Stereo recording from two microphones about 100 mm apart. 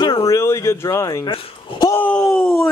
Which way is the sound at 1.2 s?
45° left (ahead or behind).